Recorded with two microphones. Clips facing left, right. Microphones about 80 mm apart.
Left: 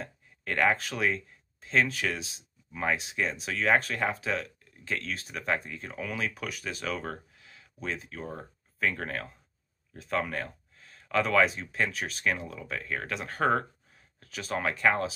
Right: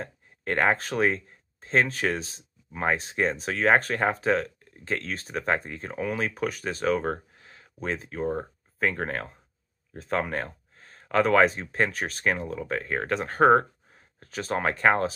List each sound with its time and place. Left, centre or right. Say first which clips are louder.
0.0 s speech: right 5 dB; right